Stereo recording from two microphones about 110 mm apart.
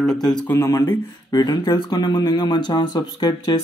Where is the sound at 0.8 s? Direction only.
40° left (ahead or behind).